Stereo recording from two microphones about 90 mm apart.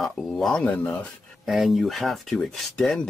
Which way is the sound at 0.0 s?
Centre (ahead or behind).